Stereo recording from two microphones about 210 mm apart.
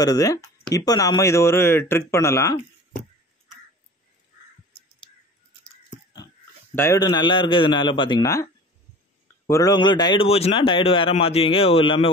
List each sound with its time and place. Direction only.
0.0 s speech: 15° left (ahead or behind)
6.7 s a man's voice: 15° left (ahead or behind)
9.5 s a man's voice: 15° left (ahead or behind)